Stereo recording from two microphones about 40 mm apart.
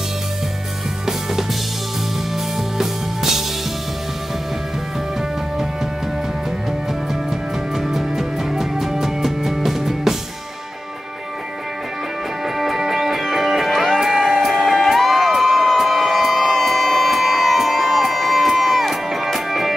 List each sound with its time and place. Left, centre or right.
1.0 s music: centre
2.8 s music: centre
7.1 s music: centre
12.5 s music: centre
14.6 s crowd: centre